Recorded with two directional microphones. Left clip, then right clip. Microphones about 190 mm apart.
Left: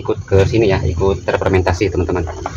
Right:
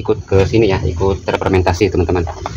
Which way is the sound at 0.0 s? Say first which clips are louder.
Right 1 dB; 45° right (ahead or behind).